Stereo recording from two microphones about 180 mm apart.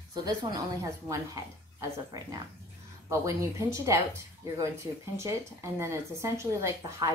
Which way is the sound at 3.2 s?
15° right (ahead or behind).